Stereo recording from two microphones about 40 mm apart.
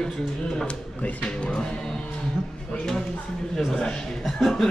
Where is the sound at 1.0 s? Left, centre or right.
Left.